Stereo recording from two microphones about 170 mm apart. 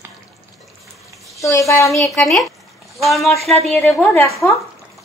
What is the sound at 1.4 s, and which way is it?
Speech, 15° left (ahead or behind).